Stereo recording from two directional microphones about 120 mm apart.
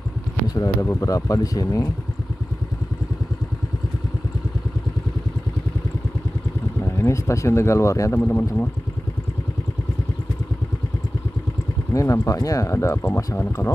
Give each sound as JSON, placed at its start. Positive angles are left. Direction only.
{"t": 0.6, "sound": "speech", "side_deg": 25}
{"t": 6.8, "sound": "speech", "side_deg": 25}
{"t": 8.2, "sound": "speech", "side_deg": 15}
{"t": 11.9, "sound": "speech", "side_deg": 25}